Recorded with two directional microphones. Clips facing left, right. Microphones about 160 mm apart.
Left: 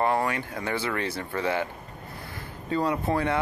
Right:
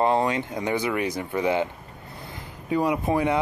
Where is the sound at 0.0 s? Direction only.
20° right (ahead or behind).